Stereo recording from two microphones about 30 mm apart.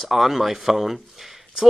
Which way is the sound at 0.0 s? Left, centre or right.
Centre.